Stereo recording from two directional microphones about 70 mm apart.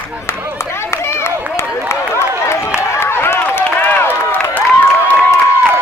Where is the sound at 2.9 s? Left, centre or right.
Left.